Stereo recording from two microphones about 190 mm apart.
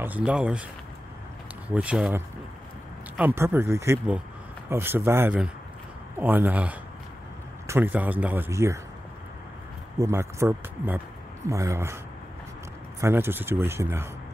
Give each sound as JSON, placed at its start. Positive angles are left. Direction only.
{"t": 0.0, "sound": "speech", "side_deg": -5}
{"t": 1.7, "sound": "speech", "side_deg": -5}
{"t": 9.9, "sound": "speech", "side_deg": -15}
{"t": 13.0, "sound": "speech", "side_deg": -10}